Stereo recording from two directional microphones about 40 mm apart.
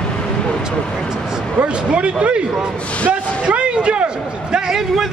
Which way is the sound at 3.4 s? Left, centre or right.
Right.